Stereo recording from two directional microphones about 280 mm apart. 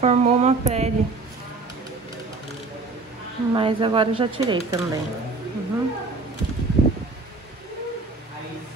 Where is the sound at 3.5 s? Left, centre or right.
Centre.